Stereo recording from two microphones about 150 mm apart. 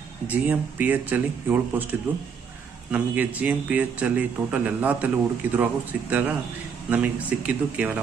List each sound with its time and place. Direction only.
0.3 s speech: 10° right (ahead or behind)